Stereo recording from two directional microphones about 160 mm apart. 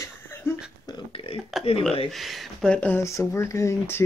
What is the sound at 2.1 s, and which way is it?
Speech, centre (ahead or behind).